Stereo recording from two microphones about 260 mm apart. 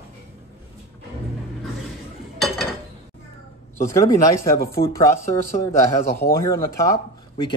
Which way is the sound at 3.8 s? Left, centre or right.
Centre.